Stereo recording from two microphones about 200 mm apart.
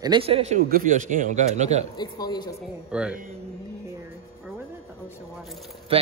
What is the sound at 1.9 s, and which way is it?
Speech, 20° left (ahead or behind).